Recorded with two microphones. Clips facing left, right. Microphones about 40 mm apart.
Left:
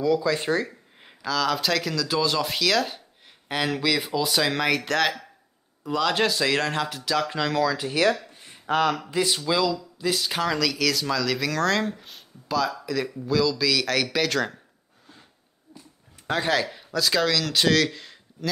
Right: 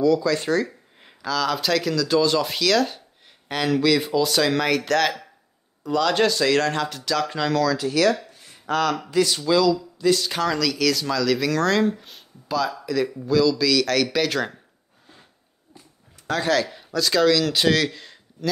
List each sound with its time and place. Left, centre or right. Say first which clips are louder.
0.0 s speech: right 3 dB; centre
1.0 s speech: right 1 dB; centre
7.6 s speech: right 2 dB; left
8.3 s a sound: even; left
9.1 s speech: right 4 dB; centre
16.3 s speech: right 2 dB; centre